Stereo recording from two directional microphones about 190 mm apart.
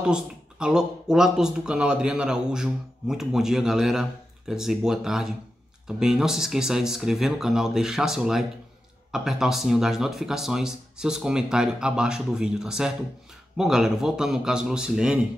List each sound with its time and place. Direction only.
0.0 s speech: 5° right (ahead or behind)